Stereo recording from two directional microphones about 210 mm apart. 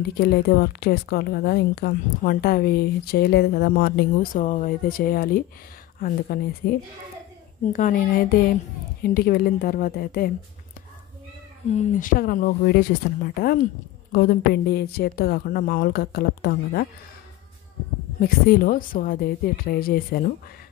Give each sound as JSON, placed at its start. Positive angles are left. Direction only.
{"t": 0.2, "sound": "a woman's voice", "side_deg": 45}
{"t": 7.7, "sound": "a woman's voice", "side_deg": 40}
{"t": 11.7, "sound": "a woman's voice", "side_deg": 35}
{"t": 18.2, "sound": "a woman's voice", "side_deg": 45}